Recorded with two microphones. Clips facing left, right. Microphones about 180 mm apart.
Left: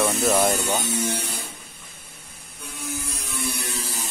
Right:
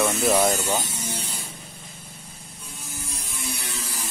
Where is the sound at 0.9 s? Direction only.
60° left (ahead or behind).